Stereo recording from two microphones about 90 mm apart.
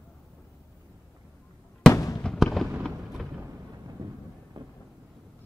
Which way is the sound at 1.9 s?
40° left (ahead or behind).